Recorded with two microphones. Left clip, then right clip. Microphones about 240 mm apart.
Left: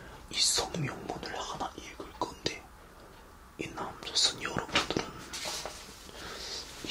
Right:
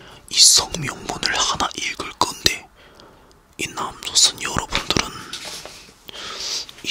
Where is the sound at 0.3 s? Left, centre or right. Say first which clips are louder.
Right 15 dB; right.